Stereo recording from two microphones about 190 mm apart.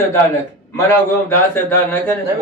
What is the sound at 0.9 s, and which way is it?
A man's voice, 10° left (ahead or behind).